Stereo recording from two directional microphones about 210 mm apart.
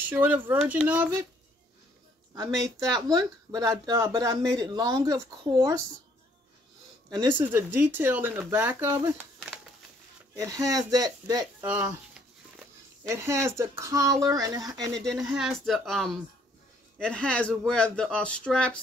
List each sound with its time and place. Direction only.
0.0 s speech: 10° right (ahead or behind)
3.1 s speech: 15° right (ahead or behind)
7.1 s speech: 20° right (ahead or behind)
7.3 s speech: 10° right (ahead or behind)
15.0 s speech: centre (ahead or behind)